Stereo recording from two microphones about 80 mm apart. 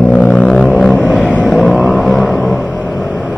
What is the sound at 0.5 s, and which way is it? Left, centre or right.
Vehicle, centre.